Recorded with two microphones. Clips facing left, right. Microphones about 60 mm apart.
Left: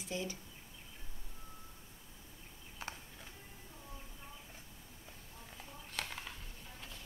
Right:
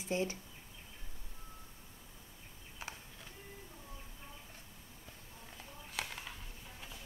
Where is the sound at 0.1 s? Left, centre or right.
Right.